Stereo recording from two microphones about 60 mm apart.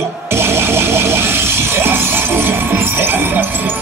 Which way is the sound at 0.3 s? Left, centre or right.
Right.